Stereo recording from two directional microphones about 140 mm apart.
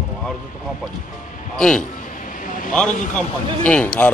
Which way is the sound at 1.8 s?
70° left (ahead or behind).